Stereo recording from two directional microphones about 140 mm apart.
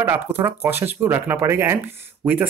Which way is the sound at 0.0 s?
15° right (ahead or behind).